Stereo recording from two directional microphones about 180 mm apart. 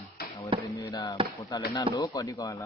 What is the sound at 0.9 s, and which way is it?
Speech, 20° left (ahead or behind).